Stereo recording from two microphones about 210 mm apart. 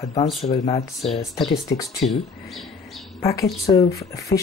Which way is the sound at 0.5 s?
30° left (ahead or behind).